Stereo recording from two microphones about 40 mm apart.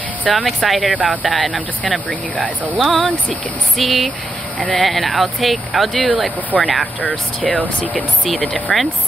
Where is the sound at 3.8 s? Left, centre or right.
Centre.